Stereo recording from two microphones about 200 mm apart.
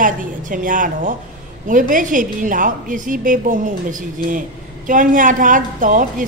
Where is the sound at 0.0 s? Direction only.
40° right (ahead or behind).